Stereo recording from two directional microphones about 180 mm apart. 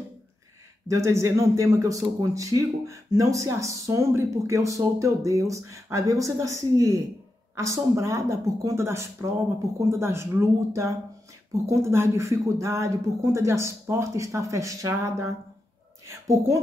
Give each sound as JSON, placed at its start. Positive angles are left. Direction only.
{"t": 0.8, "sound": "speech", "side_deg": -15}